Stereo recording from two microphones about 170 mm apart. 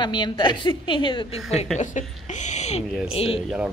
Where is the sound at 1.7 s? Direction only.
45° left (ahead or behind).